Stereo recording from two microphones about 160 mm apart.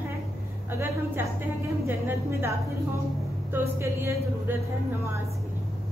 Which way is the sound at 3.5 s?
15° right (ahead or behind).